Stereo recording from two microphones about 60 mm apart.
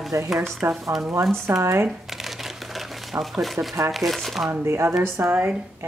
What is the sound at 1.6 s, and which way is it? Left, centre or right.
Speech, right.